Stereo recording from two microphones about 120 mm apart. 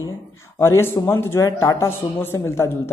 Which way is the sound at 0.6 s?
20° left (ahead or behind).